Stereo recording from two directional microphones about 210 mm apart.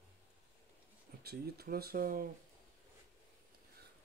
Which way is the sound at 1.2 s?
50° right (ahead or behind).